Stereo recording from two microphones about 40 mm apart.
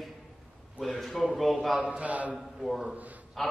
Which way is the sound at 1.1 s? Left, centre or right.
Centre.